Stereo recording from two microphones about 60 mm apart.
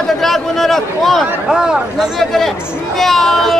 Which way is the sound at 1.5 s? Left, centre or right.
Centre.